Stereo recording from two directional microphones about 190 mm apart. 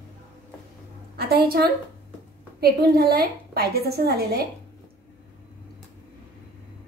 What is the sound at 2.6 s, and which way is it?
A woman's voice, 55° right (ahead or behind).